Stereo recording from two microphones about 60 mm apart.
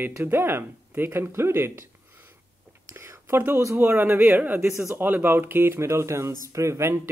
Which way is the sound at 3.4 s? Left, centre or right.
Right.